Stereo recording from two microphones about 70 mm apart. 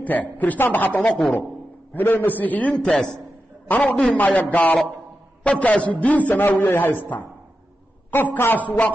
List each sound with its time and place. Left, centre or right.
0.0 s a man's voice: left
2.7 s a man's voice: centre